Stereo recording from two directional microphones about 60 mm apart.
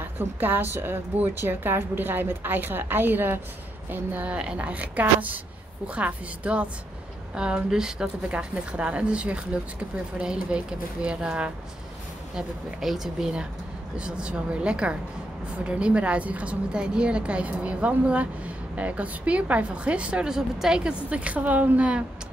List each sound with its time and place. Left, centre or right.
0.0 s a woman's voice: right; by 11.5 s centre
12.4 s speech: centre
13.9 s a woman's voice: centre
20.3 s a woman's voice: centre